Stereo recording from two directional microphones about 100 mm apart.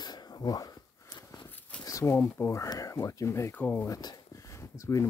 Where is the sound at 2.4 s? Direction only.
30° left (ahead or behind).